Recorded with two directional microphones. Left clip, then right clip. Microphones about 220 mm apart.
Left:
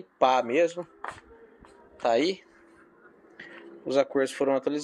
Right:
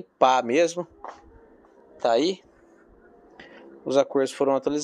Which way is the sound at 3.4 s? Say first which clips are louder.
Right 1 dB; 15° right (ahead or behind).